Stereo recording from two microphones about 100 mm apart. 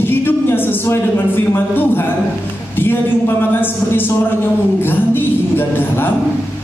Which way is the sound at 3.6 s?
20° left (ahead or behind).